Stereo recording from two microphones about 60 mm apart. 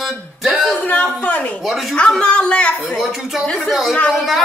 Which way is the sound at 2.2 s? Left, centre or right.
Centre.